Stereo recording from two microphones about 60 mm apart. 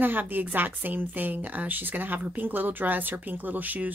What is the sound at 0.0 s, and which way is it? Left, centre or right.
A woman's voice, right.